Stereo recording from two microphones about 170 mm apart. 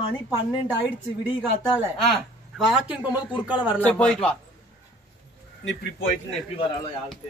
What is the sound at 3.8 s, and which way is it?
Speech, 5° left (ahead or behind).